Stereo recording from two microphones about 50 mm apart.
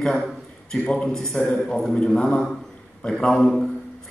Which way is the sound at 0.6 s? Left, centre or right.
Centre.